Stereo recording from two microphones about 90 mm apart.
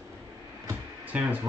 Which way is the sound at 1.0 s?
15° right (ahead or behind).